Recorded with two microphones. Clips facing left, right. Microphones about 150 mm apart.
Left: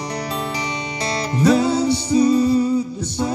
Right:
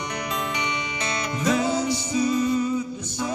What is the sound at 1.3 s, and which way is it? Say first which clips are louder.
Music: left 7 dB; 35° left (ahead or behind).